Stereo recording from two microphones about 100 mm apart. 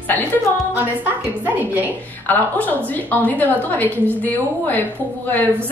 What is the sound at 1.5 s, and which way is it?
Speech, 15° right (ahead or behind).